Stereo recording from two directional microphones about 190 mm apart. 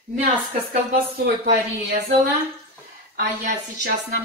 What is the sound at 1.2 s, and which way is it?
Speech, 65° right (ahead or behind).